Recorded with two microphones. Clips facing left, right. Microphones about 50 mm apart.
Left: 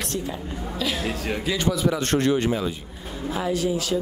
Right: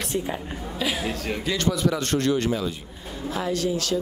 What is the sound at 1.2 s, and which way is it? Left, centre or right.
Speech, centre.